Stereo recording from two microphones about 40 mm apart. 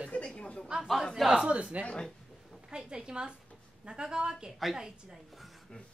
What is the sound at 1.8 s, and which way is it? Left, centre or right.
Speech, right.